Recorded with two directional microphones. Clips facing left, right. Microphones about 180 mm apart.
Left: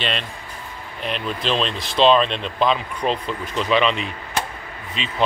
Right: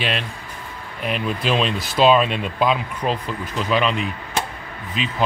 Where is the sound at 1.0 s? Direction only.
5° right (ahead or behind).